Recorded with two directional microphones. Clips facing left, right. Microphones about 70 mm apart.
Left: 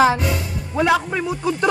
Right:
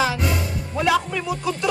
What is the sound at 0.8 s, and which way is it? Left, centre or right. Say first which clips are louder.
Speech: left 3 dB; left.